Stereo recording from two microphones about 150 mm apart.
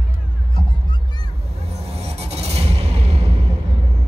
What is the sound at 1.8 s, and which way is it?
Music, 45° right (ahead or behind).